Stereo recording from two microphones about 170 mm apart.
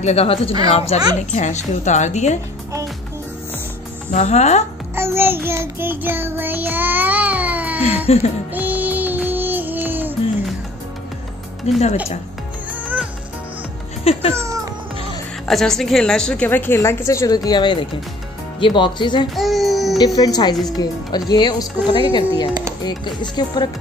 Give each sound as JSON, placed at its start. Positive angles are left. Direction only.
{"t": 0.0, "sound": "a woman's voice", "side_deg": 35}
{"t": 4.1, "sound": "speech", "side_deg": 45}
{"t": 4.9, "sound": "child singing", "side_deg": -15}
{"t": 8.1, "sound": "speech", "side_deg": 35}
{"t": 8.5, "sound": "music", "side_deg": -10}
{"t": 11.7, "sound": "speech", "side_deg": 40}
{"t": 12.8, "sound": "music", "side_deg": -10}
{"t": 14.3, "sound": "a sound", "side_deg": -20}
{"t": 15.4, "sound": "a woman's voice", "side_deg": 0}
{"t": 19.3, "sound": "child singing", "side_deg": 0}
{"t": 20.2, "sound": "speech", "side_deg": 25}